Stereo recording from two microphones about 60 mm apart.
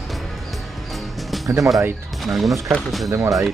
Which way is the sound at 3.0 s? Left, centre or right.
Right.